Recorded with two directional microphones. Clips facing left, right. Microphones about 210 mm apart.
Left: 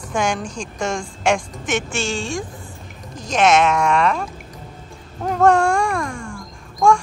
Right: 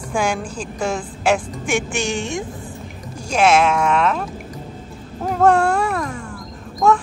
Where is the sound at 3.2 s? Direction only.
10° right (ahead or behind).